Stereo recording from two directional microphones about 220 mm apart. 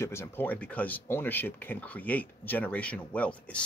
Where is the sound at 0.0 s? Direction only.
10° left (ahead or behind).